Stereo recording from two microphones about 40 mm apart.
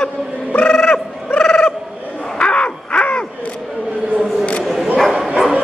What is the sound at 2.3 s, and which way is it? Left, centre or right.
Crow, left.